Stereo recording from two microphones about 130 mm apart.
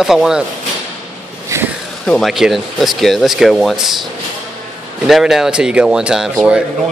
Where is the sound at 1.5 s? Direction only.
25° right (ahead or behind).